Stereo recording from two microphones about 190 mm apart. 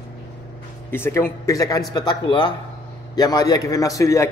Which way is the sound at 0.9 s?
10° left (ahead or behind).